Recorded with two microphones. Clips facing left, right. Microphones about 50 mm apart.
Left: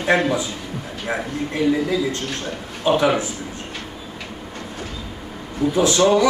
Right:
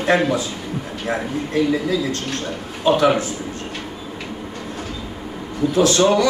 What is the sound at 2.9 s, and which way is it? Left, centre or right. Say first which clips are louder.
Speech: right 1 dB; left.